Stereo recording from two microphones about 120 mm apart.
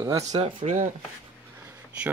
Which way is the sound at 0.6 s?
90° right.